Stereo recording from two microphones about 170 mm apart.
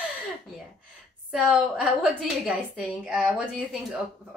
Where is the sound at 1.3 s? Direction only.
5° right (ahead or behind).